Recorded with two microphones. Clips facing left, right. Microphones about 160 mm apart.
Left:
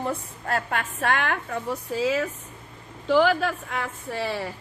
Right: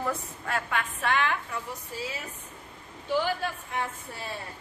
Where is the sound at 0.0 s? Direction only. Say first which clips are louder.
Left 2 dB; 35° left (ahead or behind).